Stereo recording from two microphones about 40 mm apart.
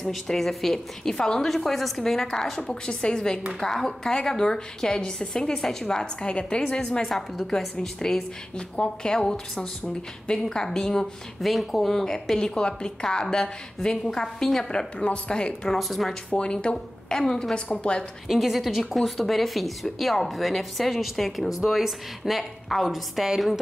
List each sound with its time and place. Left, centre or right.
0.1 s a woman's voice: centre
6.2 s a woman's voice: left
7.1 s a woman's voice: centre
11.4 s a woman's voice: centre; by 15.7 s left
15.8 s speech: centre
17.2 s a woman's voice: centre
18.3 s speech: centre
22.4 s speech: centre